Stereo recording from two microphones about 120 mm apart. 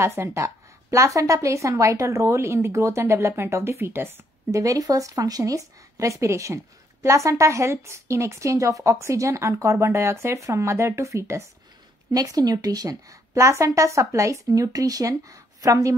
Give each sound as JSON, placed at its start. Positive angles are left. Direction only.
{"t": 0.0, "sound": "a woman's voice", "side_deg": -20}